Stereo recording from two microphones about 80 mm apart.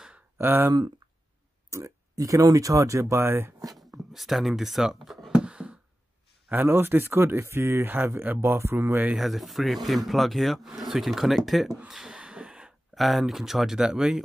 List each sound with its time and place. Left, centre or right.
0.4 s speech: right
1.7 s speech: right
3.7 s speech: centre
5.0 s a sound: centre
5.4 s a sound: centre
6.5 s speech: right
9.1 s speech: centre
11.9 s a sound: centre
12.9 s speech: centre